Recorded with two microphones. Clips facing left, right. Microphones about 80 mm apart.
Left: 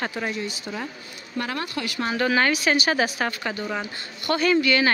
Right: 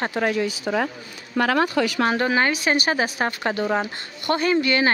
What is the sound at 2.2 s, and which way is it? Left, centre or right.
Speech, right.